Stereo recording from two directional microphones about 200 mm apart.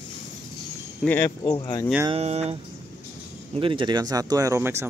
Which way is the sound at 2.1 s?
30° right (ahead or behind).